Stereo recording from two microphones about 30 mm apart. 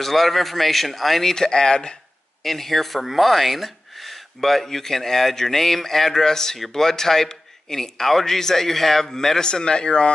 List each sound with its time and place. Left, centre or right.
0.0 s speech: centre
1.3 s speech: centre
2.4 s speech: centre
9.4 s speech: left